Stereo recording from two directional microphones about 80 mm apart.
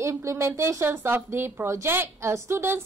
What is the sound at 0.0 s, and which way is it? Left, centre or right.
A woman's voice, right.